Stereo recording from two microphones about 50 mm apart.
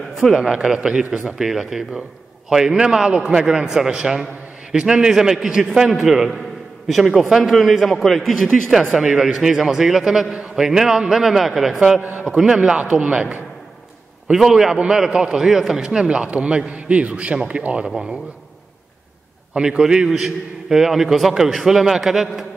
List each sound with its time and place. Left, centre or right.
0.1 s a sound: centre
0.4 s a man's voice: centre
1.4 s a man's voice: centre
12.0 s a man's voice: right
12.4 s a man's voice: centre
14.3 s a man's voice: centre
15.0 s a man's voice: centre
15.3 s a man's voice: centre; by 17.8 s right
17.8 s a man's voice: centre
19.5 s a man's voice: centre